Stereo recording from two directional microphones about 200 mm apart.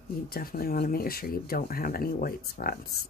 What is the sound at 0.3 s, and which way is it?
Speech, 50° left (ahead or behind).